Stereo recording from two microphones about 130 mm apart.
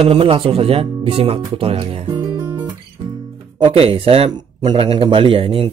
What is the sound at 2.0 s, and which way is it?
Music, 35° right (ahead or behind).